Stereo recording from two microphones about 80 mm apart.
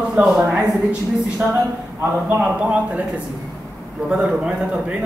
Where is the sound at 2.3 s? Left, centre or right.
Centre.